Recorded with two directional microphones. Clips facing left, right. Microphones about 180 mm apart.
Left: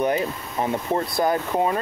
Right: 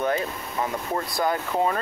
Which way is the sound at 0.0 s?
20° left (ahead or behind).